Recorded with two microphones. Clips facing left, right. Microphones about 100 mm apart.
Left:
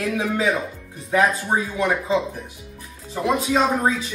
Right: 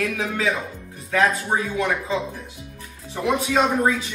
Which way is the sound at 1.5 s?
25° left (ahead or behind).